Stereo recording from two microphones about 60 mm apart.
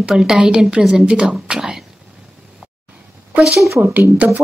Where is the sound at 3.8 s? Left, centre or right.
Right.